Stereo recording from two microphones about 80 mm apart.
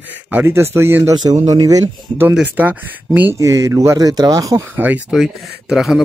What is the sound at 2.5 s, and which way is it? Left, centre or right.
Speech, right.